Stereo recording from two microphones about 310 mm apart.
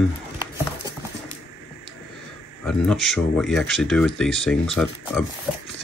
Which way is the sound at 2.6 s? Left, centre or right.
Centre.